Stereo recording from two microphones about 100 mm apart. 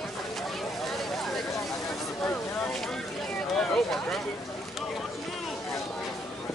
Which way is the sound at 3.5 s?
5° left (ahead or behind).